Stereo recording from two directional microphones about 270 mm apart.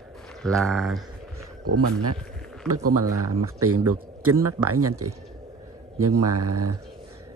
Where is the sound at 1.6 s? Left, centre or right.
Right.